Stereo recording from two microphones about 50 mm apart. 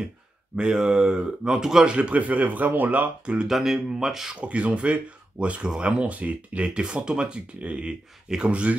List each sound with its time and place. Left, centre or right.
0.6 s speech: centre
2.0 s speech: right
3.4 s speech: centre
4.4 s speech: right